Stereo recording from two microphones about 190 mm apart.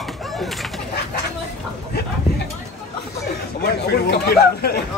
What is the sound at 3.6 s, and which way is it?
Speech, 55° left (ahead or behind).